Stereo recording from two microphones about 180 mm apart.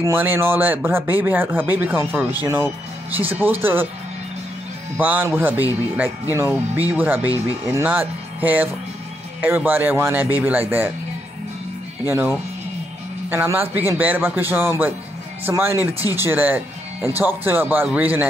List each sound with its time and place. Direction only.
0.0 s speech: 10° right (ahead or behind)
4.9 s speech: 10° right (ahead or behind)
12.1 s speech: 10° right (ahead or behind)